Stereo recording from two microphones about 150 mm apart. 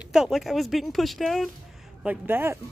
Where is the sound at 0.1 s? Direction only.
Centre (ahead or behind).